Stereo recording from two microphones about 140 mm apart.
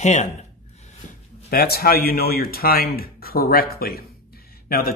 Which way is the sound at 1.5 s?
90° left.